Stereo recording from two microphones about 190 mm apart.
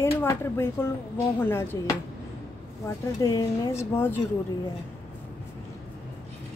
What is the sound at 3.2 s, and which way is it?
A woman's voice, 15° left (ahead or behind).